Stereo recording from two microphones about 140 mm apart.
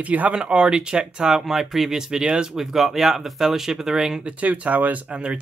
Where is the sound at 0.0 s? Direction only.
10° right (ahead or behind).